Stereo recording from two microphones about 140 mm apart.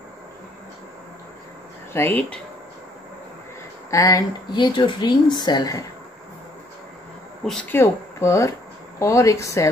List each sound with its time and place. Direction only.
2.0 s speech: 10° left (ahead or behind)
3.9 s a woman's voice: 25° left (ahead or behind)
7.7 s a woman's voice: 20° left (ahead or behind)